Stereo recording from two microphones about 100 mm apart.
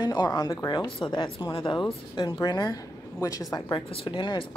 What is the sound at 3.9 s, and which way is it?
Speech, 55° left (ahead or behind).